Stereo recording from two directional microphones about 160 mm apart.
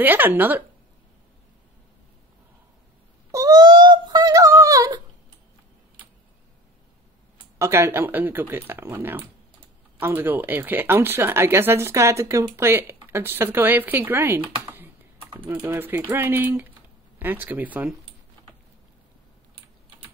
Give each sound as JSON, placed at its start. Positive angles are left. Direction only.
{"t": 0.0, "sound": "speech", "side_deg": -10}
{"t": 3.3, "sound": "a sound", "side_deg": -20}
{"t": 7.5, "sound": "speech", "side_deg": -15}